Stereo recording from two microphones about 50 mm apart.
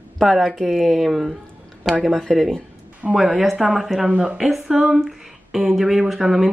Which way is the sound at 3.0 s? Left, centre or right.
Right.